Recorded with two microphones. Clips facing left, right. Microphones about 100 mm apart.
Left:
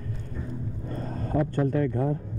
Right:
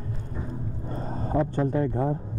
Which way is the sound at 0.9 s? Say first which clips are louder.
Right 1 dB; 25° right (ahead or behind).